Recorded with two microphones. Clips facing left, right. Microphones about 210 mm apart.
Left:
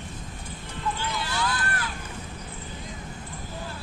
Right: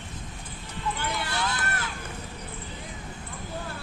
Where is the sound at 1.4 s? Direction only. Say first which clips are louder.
Left 2 dB; 25° right (ahead or behind).